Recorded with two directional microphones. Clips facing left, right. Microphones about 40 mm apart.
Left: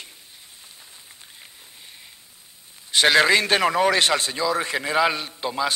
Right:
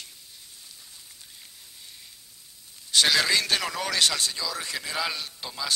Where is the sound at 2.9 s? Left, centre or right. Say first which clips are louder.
Left 6 dB; left.